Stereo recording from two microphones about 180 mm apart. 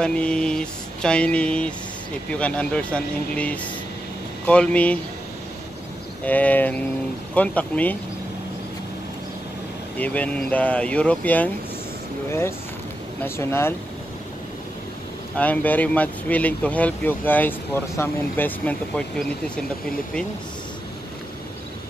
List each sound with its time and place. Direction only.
0.0 s a sound: 5° left (ahead or behind)
2.3 s speech: 5° left (ahead or behind)
6.2 s speech: 10° left (ahead or behind)
9.9 s speech: 10° left (ahead or behind)
15.3 s speech: 10° left (ahead or behind)